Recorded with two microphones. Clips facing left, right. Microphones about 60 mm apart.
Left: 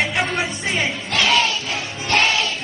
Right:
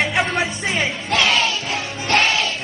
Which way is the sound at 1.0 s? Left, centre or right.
Right.